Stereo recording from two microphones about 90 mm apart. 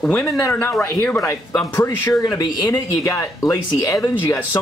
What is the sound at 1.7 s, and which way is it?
Speech, 30° left (ahead or behind).